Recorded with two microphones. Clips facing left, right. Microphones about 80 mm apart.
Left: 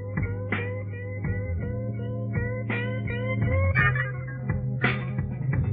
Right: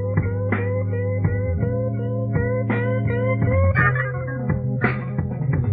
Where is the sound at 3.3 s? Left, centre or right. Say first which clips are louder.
Right 6 dB; right.